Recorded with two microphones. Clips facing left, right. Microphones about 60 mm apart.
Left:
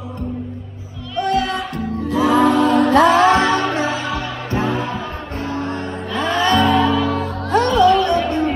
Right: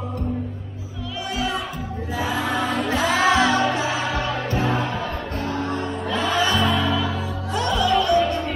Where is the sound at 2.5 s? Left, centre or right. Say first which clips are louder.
Left 9 dB; centre.